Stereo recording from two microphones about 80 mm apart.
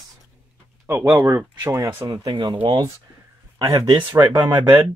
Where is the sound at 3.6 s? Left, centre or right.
Right.